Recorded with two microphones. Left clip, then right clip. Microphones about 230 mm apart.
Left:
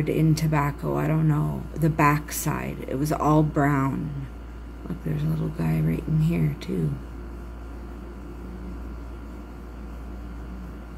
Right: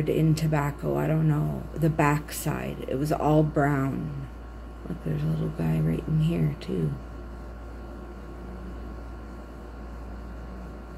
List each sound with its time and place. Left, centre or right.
0.0 s speech: centre
5.1 s speech: centre